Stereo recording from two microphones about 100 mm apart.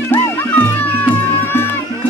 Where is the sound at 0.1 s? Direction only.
15° left (ahead or behind).